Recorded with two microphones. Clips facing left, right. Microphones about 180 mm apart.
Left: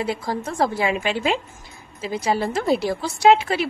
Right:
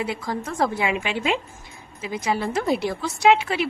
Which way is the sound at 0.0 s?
35° left (ahead or behind).